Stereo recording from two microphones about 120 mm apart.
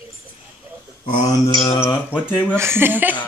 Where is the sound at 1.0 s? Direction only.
90° left.